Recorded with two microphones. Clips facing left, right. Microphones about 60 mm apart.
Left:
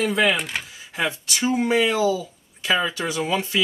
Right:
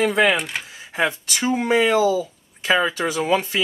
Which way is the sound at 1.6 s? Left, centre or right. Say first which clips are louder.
Right 2 dB; right.